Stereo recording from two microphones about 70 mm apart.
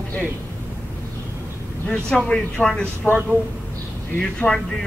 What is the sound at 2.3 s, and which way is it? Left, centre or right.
Speech, centre.